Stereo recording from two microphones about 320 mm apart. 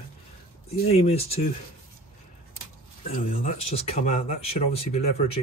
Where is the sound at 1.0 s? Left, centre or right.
Centre.